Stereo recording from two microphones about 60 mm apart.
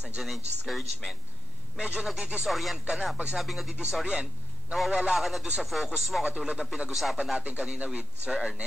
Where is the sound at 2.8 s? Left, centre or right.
Centre.